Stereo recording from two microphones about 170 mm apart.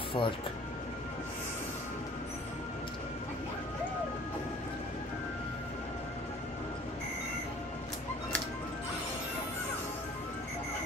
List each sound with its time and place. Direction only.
0.2 s speech: 25° left (ahead or behind)